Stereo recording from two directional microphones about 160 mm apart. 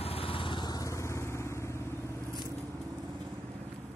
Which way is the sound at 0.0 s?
35° left (ahead or behind).